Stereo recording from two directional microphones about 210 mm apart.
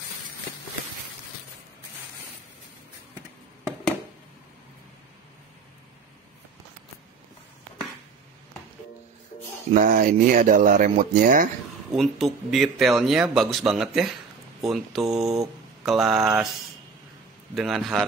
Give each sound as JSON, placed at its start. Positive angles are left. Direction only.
{"t": 9.8, "sound": "speech", "side_deg": -40}
{"t": 11.9, "sound": "speech", "side_deg": 0}
{"t": 17.6, "sound": "speech", "side_deg": 0}